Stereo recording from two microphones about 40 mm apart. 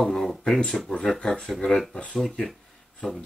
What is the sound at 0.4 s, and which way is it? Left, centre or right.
Speech, left.